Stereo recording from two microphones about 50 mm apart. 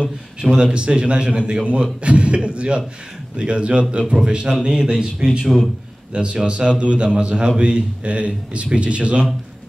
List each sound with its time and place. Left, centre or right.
0.6 s a man's voice: centre